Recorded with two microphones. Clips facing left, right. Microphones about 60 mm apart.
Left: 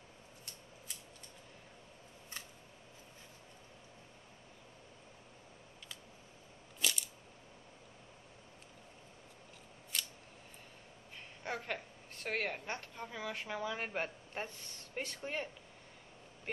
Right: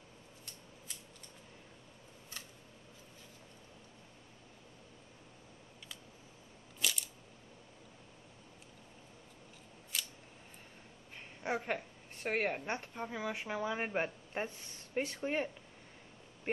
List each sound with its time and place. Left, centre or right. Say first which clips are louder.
6.8 s a sound: even; centre
9.9 s scissors: even; centre
11.4 s a woman's voice: right 4 dB; centre